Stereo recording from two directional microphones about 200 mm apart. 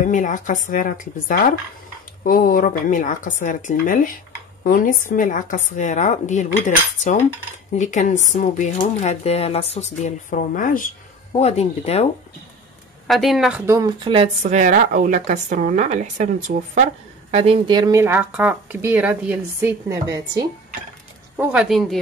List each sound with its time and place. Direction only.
0.0 s speech: 40° left (ahead or behind)
13.0 s speech: centre (ahead or behind); by 20.4 s 15° right (ahead or behind)
21.4 s a woman's voice: 5° right (ahead or behind)